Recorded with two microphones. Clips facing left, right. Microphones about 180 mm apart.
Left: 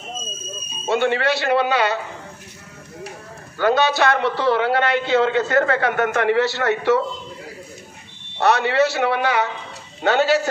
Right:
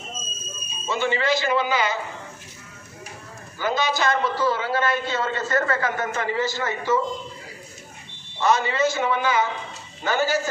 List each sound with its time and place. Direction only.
0.8 s a man's voice: 65° left (ahead or behind)
3.5 s a man's voice: 65° left (ahead or behind)
8.4 s a man's voice: 70° left (ahead or behind)